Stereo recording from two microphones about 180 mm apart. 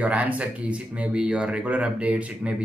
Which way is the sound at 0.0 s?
10° right (ahead or behind).